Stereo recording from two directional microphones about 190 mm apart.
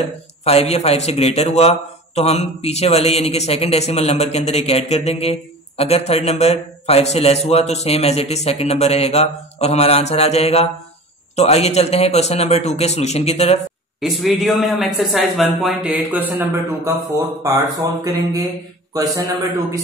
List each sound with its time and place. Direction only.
0.5 s a man's voice: 35° left (ahead or behind)
14.0 s a man's voice: centre (ahead or behind); by 19.8 s 15° right (ahead or behind)